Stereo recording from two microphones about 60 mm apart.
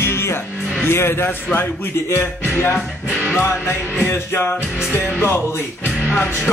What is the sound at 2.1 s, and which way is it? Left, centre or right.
Music, left.